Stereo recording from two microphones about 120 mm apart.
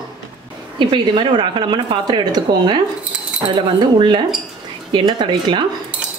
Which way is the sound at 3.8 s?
40° right (ahead or behind).